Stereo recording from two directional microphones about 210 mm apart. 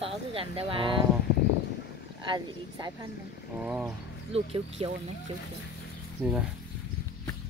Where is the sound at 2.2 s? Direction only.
20° right (ahead or behind).